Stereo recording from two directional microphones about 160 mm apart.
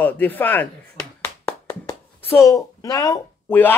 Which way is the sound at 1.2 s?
15° left (ahead or behind).